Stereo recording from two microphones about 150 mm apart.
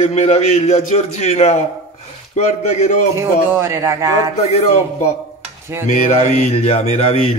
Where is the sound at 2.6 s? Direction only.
50° left (ahead or behind).